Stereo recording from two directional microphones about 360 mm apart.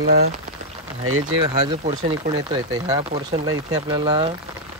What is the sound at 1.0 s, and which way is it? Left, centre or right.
Speech, right.